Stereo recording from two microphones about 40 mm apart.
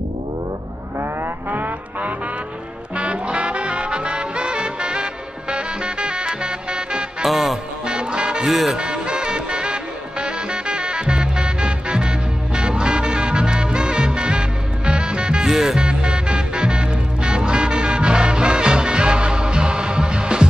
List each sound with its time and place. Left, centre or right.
1.5 s music: right
3.0 s music: right
7.2 s music: centre
7.8 s music: right
8.5 s speech: centre
8.7 s music: right
15.5 s music: centre
15.8 s music: right